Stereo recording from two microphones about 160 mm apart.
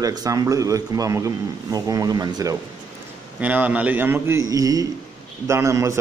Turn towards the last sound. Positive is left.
turn(degrees=-20)  # may be behind; listen again after turning